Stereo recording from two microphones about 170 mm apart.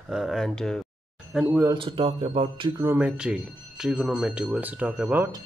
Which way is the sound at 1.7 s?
30° right (ahead or behind).